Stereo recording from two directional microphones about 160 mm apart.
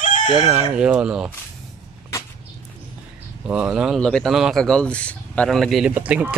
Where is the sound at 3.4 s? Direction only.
5° right (ahead or behind).